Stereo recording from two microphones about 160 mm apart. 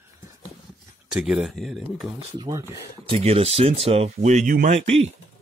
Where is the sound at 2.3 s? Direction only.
25° right (ahead or behind).